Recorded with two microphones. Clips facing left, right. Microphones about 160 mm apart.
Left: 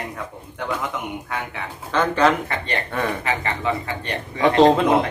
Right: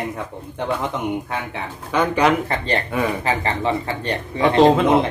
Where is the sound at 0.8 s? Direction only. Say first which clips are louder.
Right 5 dB; 30° right (ahead or behind).